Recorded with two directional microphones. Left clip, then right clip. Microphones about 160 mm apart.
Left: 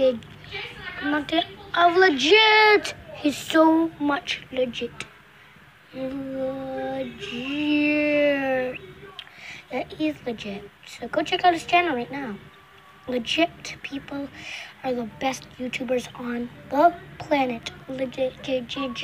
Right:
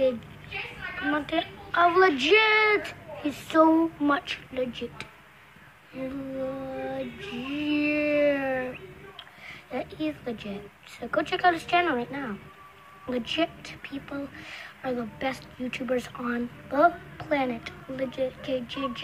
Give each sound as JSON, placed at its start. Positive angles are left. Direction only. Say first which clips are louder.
{"t": 1.1, "sound": "a woman's voice", "louder": "left 6 dB", "side_deg": 15}
{"t": 2.4, "sound": "child singing", "louder": "left 6 dB", "side_deg": 20}
{"t": 3.7, "sound": "a sound", "louder": "left 1 dB", "side_deg": -10}
{"t": 4.2, "sound": "a woman's voice", "louder": "left 5 dB", "side_deg": 5}
{"t": 6.7, "sound": "female singing", "louder": "left 4 dB", "side_deg": 5}
{"t": 12.1, "sound": "a woman's voice", "louder": "left 2 dB", "side_deg": 10}